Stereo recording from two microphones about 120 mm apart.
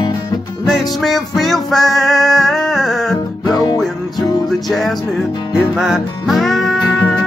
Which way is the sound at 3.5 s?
30° left (ahead or behind).